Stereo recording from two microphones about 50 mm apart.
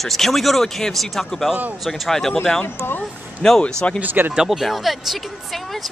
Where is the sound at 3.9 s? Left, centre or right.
Right.